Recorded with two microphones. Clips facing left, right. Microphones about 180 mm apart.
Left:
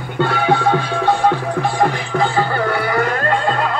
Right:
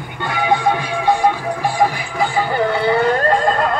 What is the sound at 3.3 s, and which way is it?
Music, 45° right (ahead or behind).